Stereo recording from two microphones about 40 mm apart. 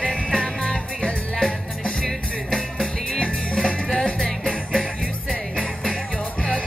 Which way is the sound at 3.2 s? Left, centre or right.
Centre.